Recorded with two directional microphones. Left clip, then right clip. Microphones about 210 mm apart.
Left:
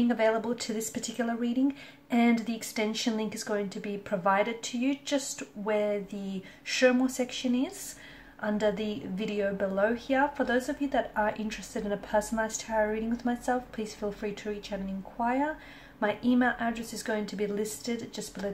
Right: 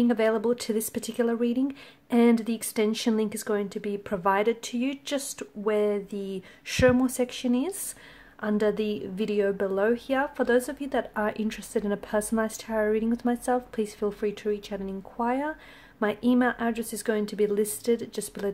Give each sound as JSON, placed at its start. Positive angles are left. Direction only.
{"t": 0.1, "sound": "speech", "side_deg": -45}